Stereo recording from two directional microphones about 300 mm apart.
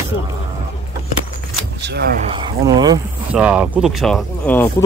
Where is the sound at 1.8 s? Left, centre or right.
Right.